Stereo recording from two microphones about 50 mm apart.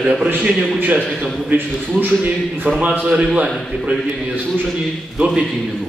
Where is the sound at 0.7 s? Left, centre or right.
Right.